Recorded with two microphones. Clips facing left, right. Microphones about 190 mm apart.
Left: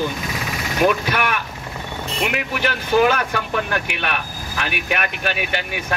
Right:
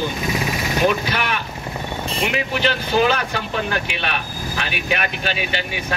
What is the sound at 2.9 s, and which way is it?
Speech, 55° left (ahead or behind).